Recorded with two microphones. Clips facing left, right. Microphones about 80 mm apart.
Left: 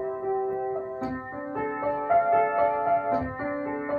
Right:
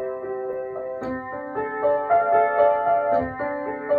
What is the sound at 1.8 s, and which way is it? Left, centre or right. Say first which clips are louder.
Music: right 4 dB; right.